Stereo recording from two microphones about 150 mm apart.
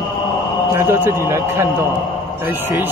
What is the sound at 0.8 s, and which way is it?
Speech, 15° right (ahead or behind).